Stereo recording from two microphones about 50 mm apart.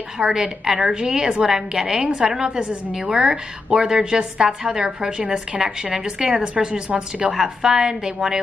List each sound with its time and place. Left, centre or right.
0.2 s a woman's voice: centre